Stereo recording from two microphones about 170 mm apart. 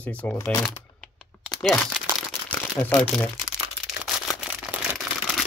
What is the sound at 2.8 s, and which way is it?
Speech, 10° left (ahead or behind).